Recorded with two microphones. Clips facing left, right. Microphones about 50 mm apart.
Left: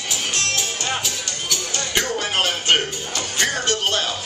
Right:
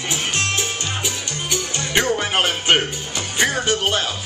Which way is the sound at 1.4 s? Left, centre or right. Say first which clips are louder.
Right 2 dB; right.